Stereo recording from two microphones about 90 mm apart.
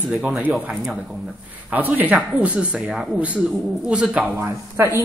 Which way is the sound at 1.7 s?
20° right (ahead or behind).